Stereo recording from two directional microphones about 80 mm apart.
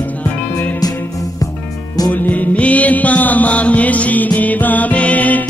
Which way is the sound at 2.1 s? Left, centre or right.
Centre.